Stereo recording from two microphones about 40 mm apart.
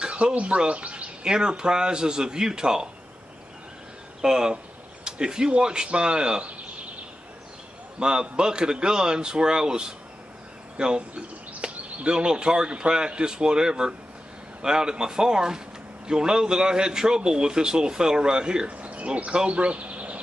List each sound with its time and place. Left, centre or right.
0.0 s speech: right
1.2 s a man's voice: right
4.2 s a man's voice: centre
8.0 s a man's voice: right
18.7 s speech: right